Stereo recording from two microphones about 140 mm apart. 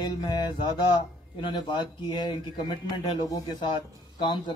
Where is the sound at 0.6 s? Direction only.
35° left (ahead or behind).